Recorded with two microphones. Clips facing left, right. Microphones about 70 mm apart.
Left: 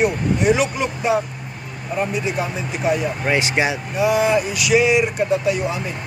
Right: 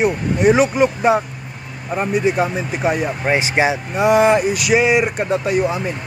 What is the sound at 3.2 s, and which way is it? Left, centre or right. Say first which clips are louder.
Speech: right 3 dB; right.